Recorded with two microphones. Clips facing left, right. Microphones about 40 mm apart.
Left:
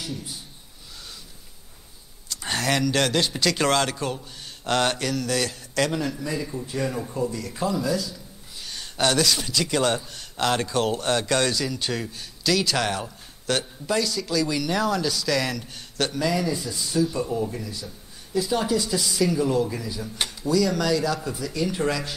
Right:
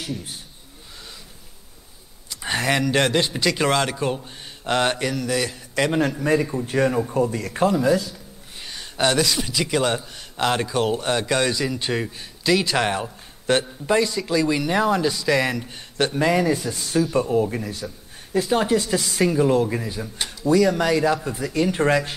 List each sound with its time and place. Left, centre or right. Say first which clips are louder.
2.2 s speech: right 3 dB; centre
3.4 s a man's voice: even; centre
3.9 s a man's voice: right 4 dB; right
5.9 s a man's voice: right 7 dB; right
8.7 s a man's voice: right 2 dB; centre
11.6 s a man's voice: right 4 dB; right
16.2 s a man's voice: right 6 dB; right